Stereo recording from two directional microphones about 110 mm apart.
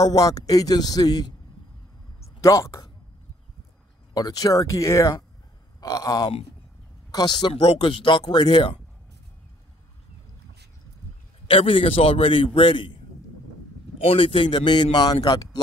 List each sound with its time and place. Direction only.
0.0 s a man's voice: 35° left (ahead or behind)
2.4 s speech: 25° left (ahead or behind)
4.1 s a man's voice: 35° left (ahead or behind)
7.6 s a man's voice: 55° left (ahead or behind)
11.4 s a man's voice: 55° left (ahead or behind)